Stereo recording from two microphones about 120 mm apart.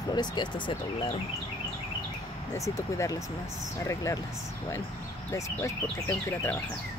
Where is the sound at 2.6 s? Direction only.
25° left (ahead or behind).